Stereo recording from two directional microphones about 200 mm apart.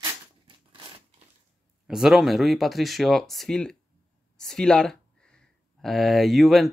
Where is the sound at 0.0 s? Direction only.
25° right (ahead or behind).